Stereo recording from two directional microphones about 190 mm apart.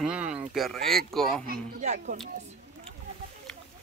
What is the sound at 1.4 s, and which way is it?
Speech, 45° right (ahead or behind).